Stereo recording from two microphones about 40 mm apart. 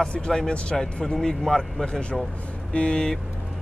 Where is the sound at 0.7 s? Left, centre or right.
Centre.